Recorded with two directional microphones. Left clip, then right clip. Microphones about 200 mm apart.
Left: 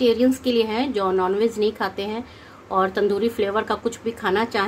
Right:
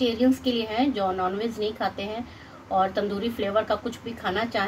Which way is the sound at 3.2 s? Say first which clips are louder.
Left 4 dB; 55° left (ahead or behind).